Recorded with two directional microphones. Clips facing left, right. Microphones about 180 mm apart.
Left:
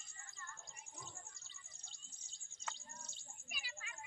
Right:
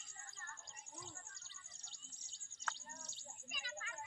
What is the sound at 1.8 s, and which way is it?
Bird, 70° right (ahead or behind).